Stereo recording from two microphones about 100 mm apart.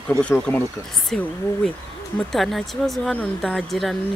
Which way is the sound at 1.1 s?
5° left (ahead or behind).